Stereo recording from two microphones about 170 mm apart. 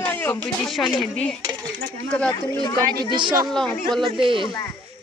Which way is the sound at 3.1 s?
25° right (ahead or behind).